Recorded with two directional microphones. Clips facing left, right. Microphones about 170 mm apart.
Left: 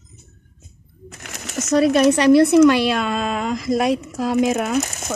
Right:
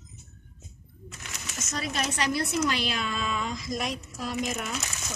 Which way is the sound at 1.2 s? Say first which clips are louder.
Left 12 dB; 85° left.